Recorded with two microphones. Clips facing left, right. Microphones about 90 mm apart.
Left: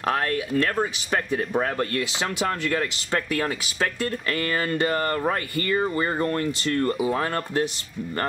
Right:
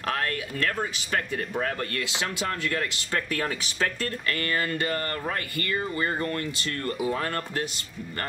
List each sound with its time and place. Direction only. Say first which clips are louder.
0.0 s speech: left 5 dB; 20° left (ahead or behind)
3.3 s speech: left 3 dB; 5° left (ahead or behind)
4.3 s speech: left 2 dB; 25° left (ahead or behind)
7.0 s speech: left 4 dB; 15° left (ahead or behind)